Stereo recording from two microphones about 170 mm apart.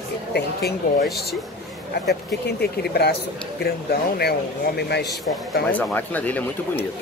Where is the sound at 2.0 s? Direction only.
70° left (ahead or behind).